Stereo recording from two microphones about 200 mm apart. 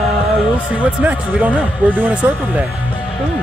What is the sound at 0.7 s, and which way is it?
Speech, 5° right (ahead or behind).